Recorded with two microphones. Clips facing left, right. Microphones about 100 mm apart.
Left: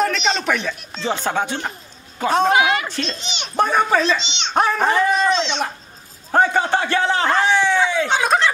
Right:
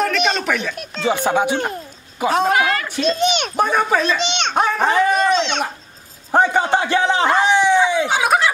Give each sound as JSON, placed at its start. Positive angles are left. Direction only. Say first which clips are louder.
{"t": 0.0, "sound": "a sound", "louder": "right 1 dB", "side_deg": -5}
{"t": 1.0, "sound": "speech", "louder": "right 4 dB", "side_deg": -15}
{"t": 2.5, "sound": "a woman's voice", "louder": "left 1 dB", "side_deg": 15}
{"t": 2.9, "sound": "speech", "louder": "right 7 dB", "side_deg": -10}
{"t": 3.2, "sound": "a child's voice", "louder": "right 14 dB", "side_deg": -55}
{"t": 3.5, "sound": "speech", "louder": "left 5 dB", "side_deg": -5}
{"t": 4.2, "sound": "a child's voice", "louder": "right 8 dB", "side_deg": -55}
{"t": 4.6, "sound": "a man's voice", "louder": "even", "side_deg": 0}